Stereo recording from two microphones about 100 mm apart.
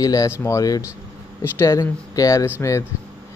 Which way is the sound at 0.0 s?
35° left (ahead or behind).